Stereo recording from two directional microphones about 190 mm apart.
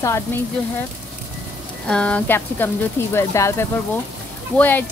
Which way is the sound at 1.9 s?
5° left (ahead or behind).